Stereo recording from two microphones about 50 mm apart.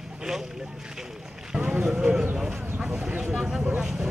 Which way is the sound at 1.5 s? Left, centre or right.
Right.